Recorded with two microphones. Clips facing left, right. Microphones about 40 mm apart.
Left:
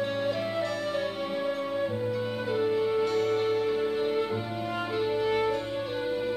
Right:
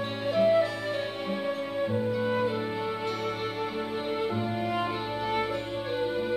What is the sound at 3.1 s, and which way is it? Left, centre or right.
Music, right.